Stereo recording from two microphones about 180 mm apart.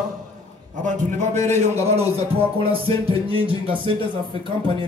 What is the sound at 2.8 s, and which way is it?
Music, 30° right (ahead or behind).